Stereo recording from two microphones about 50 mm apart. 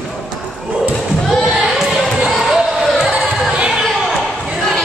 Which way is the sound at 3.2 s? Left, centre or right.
Centre.